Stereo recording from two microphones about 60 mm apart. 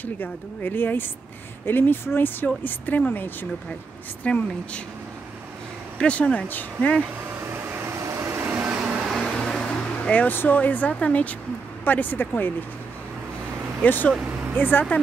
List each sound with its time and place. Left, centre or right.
0.0 s speech: left
4.2 s speech: centre
5.9 s speech: centre
7.5 s vehicle: right
8.5 s vehicle: right
9.6 s vehicle: centre
10.2 s speech: left
13.8 s speech: left